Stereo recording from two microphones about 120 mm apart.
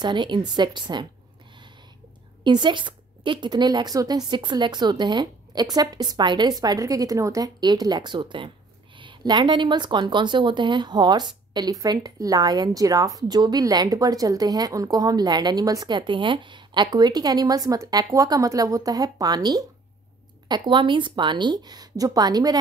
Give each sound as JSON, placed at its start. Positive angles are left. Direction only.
{"t": 0.0, "sound": "a woman's voice", "side_deg": -40}
{"t": 2.4, "sound": "a woman's voice", "side_deg": -40}